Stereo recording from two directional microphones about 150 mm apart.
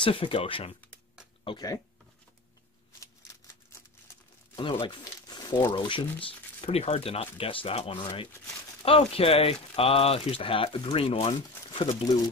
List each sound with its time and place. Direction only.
0.0 s speech: 35° left (ahead or behind)
4.6 s speech: 35° left (ahead or behind)